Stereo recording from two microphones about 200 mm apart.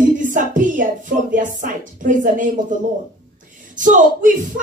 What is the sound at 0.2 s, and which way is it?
Music, 40° right (ahead or behind).